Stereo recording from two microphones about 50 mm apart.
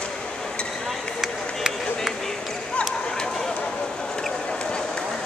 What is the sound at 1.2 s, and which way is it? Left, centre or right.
Run, centre.